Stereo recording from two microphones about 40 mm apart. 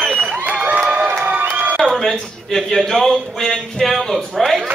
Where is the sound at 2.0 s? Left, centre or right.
Centre.